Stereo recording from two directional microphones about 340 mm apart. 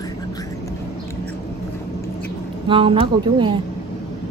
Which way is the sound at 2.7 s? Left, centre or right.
Centre.